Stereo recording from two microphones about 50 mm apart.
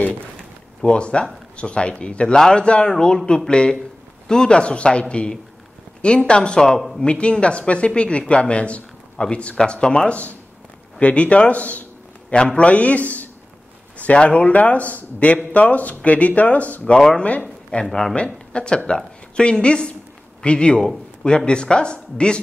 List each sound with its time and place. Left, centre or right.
0.8 s a man's voice: centre